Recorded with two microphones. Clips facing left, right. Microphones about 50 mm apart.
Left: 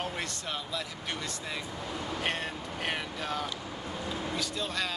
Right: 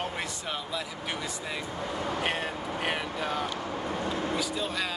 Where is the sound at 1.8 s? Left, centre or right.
Right.